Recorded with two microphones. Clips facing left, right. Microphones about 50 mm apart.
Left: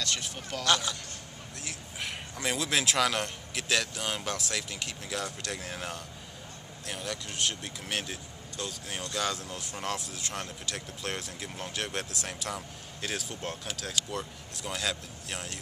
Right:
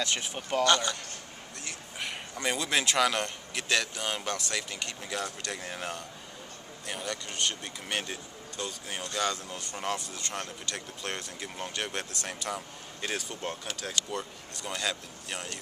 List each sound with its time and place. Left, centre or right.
0.0 s speech: right
0.7 s speech: centre